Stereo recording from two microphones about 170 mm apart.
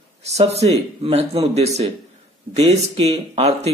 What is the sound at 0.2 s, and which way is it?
Speech, 40° right (ahead or behind).